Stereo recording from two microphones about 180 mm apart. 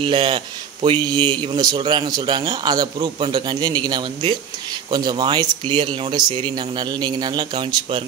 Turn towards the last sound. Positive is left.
turn(degrees=-25)  # may be behind; listen again after turning